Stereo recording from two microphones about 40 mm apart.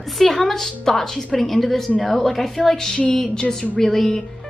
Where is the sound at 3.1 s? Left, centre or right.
Centre.